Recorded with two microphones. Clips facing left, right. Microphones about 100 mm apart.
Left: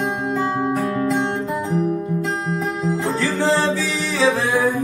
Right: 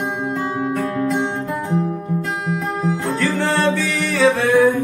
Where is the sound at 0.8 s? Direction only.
15° left (ahead or behind).